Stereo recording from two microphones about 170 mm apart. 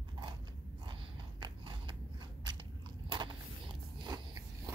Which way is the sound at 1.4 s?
30° right (ahead or behind).